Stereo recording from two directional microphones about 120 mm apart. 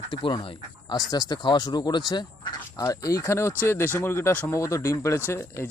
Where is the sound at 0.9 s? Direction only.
35° left (ahead or behind).